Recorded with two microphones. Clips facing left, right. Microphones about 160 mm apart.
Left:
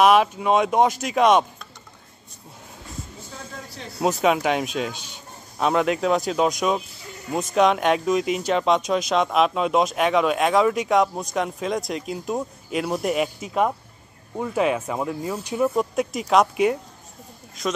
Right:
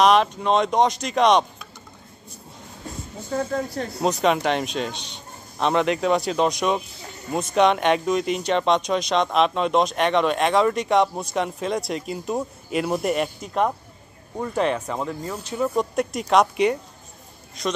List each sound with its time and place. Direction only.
0.0 s speech: 5° left (ahead or behind)
3.3 s a woman's voice: 55° right (ahead or behind)
4.0 s speech: 5° left (ahead or behind)